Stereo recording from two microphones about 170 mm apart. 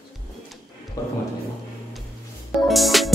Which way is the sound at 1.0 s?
20° left (ahead or behind).